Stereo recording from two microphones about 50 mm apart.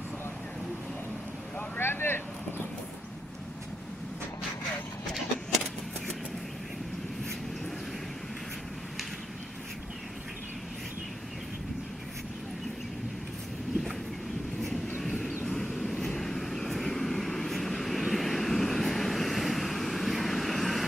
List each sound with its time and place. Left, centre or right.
1.8 s vehicle: left
15.0 s vehicle: centre